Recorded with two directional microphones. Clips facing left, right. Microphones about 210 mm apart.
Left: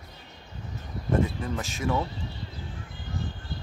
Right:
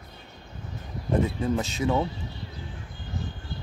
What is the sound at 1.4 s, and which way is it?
Speech, 20° right (ahead or behind).